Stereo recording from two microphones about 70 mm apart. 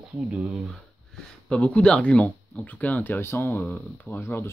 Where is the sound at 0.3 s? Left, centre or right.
Centre.